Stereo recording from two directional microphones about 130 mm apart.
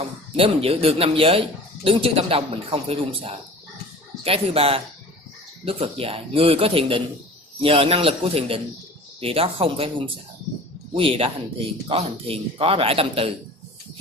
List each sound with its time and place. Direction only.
0.4 s speech: 50° right (ahead or behind)